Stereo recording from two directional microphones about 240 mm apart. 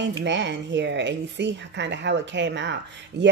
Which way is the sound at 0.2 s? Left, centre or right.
Right.